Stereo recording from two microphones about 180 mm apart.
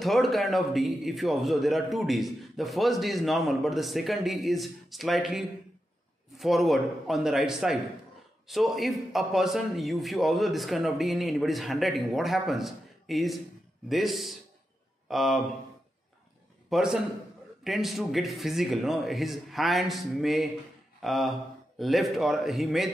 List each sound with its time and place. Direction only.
0.0 s a man's voice: centre (ahead or behind)
16.6 s a man's voice: centre (ahead or behind)